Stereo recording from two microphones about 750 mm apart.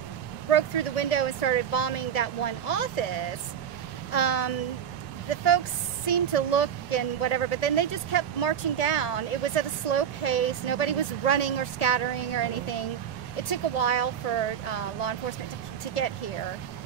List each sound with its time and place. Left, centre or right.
0.5 s a woman's voice: left
4.1 s a woman's voice: left